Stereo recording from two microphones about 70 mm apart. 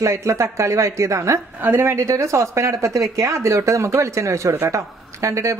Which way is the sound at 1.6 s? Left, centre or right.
Right.